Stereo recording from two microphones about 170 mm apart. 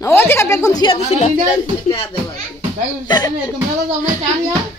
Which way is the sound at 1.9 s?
25° left (ahead or behind).